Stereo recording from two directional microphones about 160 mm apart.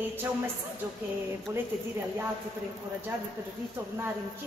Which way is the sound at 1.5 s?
15° right (ahead or behind).